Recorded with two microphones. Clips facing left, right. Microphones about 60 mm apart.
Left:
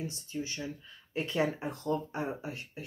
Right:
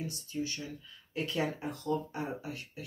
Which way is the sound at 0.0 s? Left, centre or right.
Left.